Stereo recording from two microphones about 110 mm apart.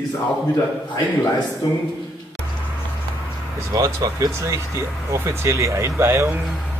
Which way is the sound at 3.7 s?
30° right (ahead or behind).